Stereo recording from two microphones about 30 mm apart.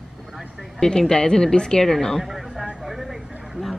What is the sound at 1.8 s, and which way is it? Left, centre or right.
Speech, centre.